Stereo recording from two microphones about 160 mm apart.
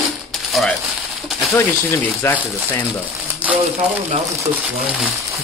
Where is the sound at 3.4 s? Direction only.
10° right (ahead or behind).